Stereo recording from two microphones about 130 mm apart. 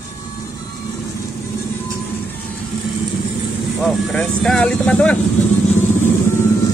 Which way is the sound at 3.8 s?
5° left (ahead or behind).